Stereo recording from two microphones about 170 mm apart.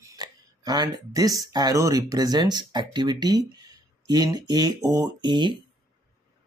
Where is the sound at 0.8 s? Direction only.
20° right (ahead or behind).